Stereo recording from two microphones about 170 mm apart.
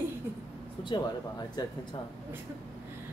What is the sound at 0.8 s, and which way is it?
Speech, 25° left (ahead or behind).